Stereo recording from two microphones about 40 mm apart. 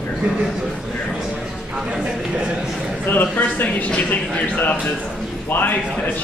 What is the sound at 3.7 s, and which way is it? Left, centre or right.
Speech, left.